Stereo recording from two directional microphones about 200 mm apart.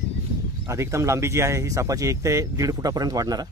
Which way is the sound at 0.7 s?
15° right (ahead or behind).